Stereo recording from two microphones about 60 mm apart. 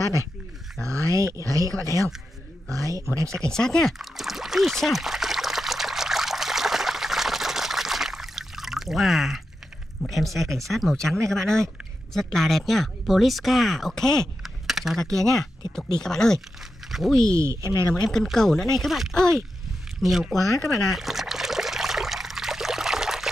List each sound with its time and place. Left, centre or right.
0.8 s speech: right
3.5 s speech: centre
4.0 s trickle: centre
10.0 s speech: centre
14.4 s typing: centre
15.0 s speech: centre
16.9 s speech: centre
17.3 s speech: right
17.9 s speech: centre
19.1 s speech: centre
20.0 s a sound: centre